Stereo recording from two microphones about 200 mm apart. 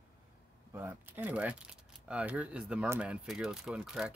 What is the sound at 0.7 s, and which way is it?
Speech, 10° right (ahead or behind).